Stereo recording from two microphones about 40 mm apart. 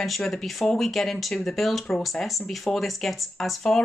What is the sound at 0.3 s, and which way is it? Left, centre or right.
Speech, centre.